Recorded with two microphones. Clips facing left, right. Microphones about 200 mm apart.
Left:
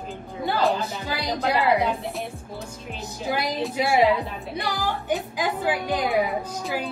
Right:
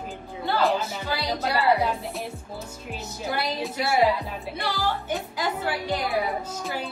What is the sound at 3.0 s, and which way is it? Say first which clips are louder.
Speech: left 3 dB; 15° left (ahead or behind).